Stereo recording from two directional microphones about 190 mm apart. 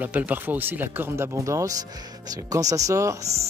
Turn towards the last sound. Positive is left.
turn(degrees=-15)  # may be behind; listen again after turning